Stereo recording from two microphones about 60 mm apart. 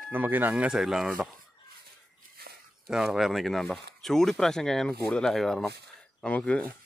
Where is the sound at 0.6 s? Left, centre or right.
Centre.